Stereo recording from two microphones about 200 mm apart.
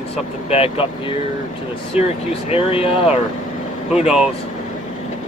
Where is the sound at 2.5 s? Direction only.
30° left (ahead or behind).